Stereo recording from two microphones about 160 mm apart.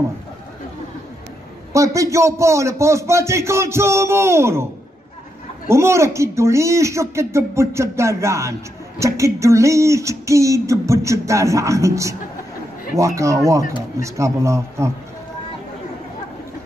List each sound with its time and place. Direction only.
1.7 s speech: 20° right (ahead or behind)
5.7 s speech: 15° right (ahead or behind)
9.0 s a sound: 20° right (ahead or behind)
13.9 s speech: 20° right (ahead or behind)